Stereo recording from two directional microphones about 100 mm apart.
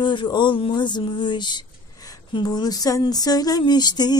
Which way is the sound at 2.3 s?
45° left (ahead or behind).